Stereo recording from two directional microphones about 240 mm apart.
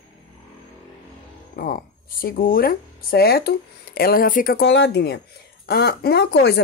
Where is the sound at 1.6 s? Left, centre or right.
Left.